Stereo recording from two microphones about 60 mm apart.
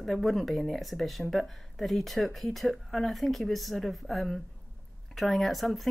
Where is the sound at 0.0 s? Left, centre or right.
Centre.